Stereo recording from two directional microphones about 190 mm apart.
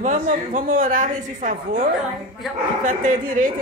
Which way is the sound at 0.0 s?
40° right (ahead or behind).